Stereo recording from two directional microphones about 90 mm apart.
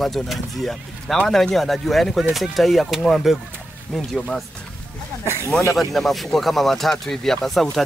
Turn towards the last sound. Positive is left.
turn(degrees=5)  # may be behind; listen again after turning